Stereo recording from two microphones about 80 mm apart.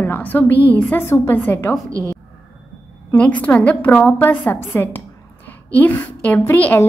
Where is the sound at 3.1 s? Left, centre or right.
Centre.